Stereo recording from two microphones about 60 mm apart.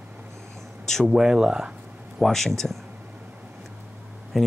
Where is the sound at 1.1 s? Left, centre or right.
Centre.